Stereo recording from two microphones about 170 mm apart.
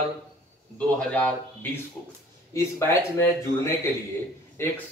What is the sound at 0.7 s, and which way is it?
Speech, 5° left (ahead or behind).